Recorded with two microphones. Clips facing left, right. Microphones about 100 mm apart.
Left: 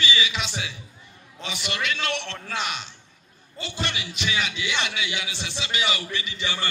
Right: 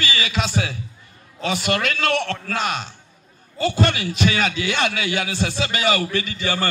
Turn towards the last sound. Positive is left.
turn(degrees=-45)  # may be behind; listen again after turning